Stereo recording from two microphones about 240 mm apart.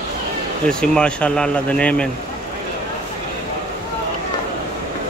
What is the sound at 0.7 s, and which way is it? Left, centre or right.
Speech, centre.